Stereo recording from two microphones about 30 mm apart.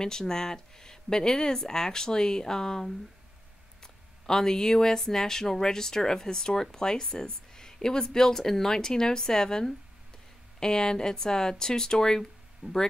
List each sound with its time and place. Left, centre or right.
0.0 s speech: left
3.8 s speech: centre
12.6 s speech: right